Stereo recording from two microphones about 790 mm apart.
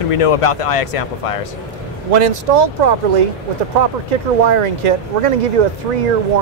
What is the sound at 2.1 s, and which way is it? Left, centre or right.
Speech, right.